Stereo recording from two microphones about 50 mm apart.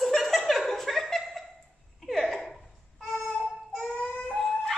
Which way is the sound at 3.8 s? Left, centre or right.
Left.